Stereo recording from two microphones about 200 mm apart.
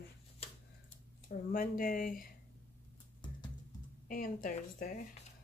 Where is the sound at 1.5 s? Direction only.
45° left (ahead or behind).